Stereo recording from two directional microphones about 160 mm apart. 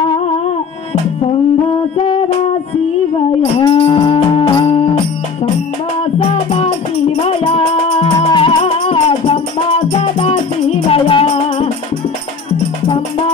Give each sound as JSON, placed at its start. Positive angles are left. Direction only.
{"t": 3.5, "sound": "music", "side_deg": 30}